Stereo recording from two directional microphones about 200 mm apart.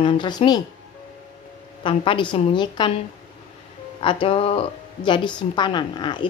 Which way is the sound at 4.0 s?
25° left (ahead or behind).